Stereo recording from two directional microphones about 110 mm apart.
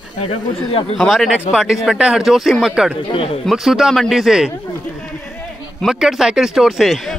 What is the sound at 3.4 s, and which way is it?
Speech, centre (ahead or behind).